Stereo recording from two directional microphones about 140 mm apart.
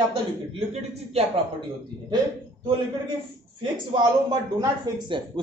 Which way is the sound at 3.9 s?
30° right (ahead or behind).